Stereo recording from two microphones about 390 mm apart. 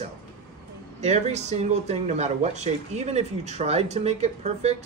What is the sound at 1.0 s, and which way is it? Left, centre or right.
Speech, centre.